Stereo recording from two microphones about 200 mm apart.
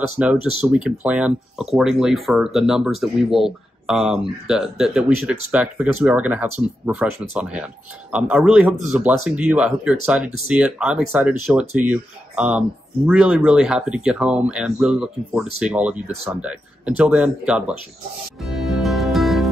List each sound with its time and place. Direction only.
0.2 s speech: 5° right (ahead or behind)
18.4 s music: centre (ahead or behind)